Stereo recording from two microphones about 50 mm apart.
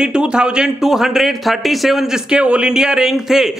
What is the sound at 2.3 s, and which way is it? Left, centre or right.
A man's voice, right.